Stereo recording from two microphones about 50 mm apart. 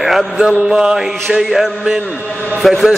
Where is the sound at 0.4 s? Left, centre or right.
Centre.